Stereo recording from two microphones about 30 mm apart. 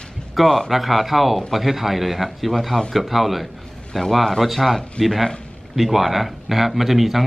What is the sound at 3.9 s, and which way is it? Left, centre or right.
A man's voice, centre.